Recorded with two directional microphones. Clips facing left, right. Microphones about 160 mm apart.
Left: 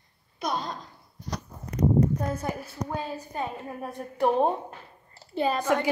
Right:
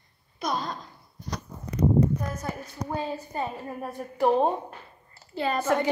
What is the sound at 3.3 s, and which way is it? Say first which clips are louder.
A woman's voice: right 1 dB; centre (ahead or behind).